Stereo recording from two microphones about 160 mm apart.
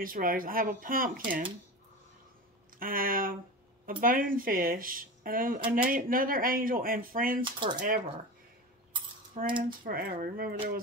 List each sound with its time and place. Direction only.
0.0 s speech: 60° right (ahead or behind)
2.8 s speech: 60° right (ahead or behind)
9.4 s speech: 50° right (ahead or behind)
9.8 s speech: 65° right (ahead or behind)